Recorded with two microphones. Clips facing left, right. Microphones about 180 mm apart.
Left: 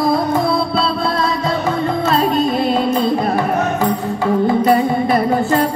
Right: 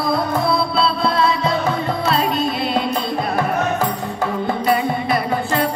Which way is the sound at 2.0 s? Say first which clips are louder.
Left 4 dB; 45° left (ahead or behind).